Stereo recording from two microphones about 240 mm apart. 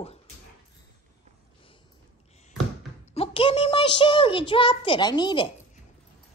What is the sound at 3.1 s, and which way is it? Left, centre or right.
A child's voice, left.